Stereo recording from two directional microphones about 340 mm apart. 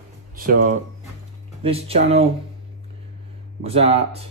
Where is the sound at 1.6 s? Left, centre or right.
Centre.